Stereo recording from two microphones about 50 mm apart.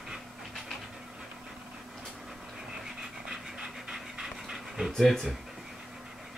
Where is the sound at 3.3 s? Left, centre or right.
Centre.